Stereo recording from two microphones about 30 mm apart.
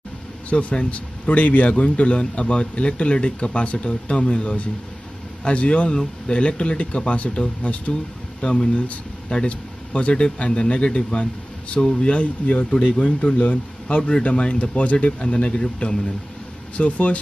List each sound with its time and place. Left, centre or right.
0.5 s speech: left
8.4 s speech: left
15.2 s speech: left
16.7 s speech: left